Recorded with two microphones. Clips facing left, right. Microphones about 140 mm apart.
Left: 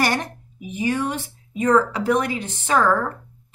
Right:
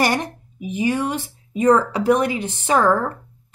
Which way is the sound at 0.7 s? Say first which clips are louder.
Right 2 dB; 15° right (ahead or behind).